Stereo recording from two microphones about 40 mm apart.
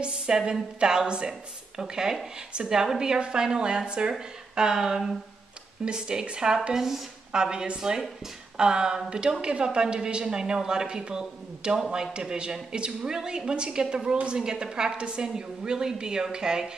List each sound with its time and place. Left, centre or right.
0.0 s a woman's voice: right
6.7 s speech: centre
7.3 s a woman's voice: right